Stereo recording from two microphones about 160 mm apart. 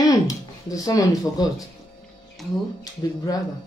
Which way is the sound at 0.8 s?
20° left (ahead or behind).